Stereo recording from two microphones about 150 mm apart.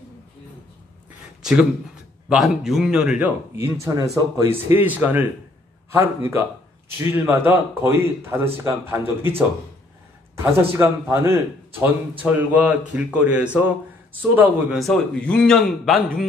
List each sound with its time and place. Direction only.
1.4 s a man's voice: 5° right (ahead or behind)
10.3 s a man's voice: 15° right (ahead or behind)
14.8 s a man's voice: 5° left (ahead or behind)